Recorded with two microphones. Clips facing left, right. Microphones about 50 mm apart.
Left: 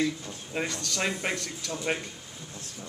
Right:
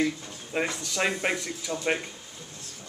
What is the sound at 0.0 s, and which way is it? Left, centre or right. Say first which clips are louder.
Speech: right 1 dB; centre.